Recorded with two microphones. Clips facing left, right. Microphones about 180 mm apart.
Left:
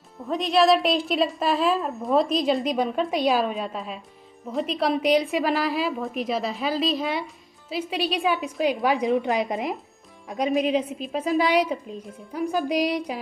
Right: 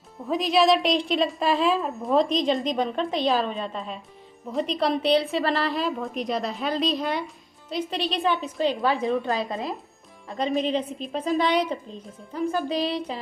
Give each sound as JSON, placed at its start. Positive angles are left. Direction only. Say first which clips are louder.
{"t": 0.2, "sound": "a woman's voice", "louder": "even", "side_deg": 0}